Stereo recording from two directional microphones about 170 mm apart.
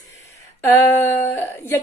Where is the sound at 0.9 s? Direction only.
10° left (ahead or behind).